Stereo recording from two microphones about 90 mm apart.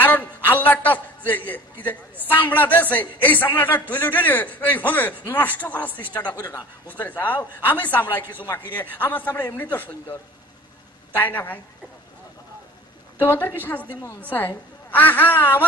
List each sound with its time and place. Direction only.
0.0 s a sound: 20° left (ahead or behind)
0.7 s a man's voice: 20° left (ahead or behind)
7.0 s a man's voice: 20° left (ahead or behind)
11.1 s a man's voice: 20° left (ahead or behind)
13.2 s a man's voice: 20° left (ahead or behind)